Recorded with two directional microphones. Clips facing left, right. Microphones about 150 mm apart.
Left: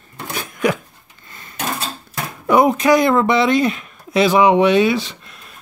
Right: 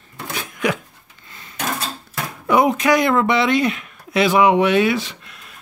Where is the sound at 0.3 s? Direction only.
45° left (ahead or behind).